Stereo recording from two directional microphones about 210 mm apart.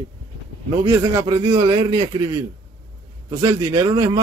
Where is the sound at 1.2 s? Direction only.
25° right (ahead or behind).